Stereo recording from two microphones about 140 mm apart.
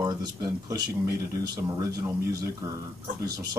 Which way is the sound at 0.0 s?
25° right (ahead or behind).